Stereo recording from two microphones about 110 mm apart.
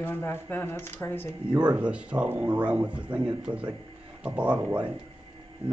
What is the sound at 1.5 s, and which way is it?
Speech, 10° right (ahead or behind).